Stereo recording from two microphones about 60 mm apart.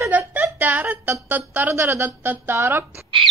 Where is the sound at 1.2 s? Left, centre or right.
Right.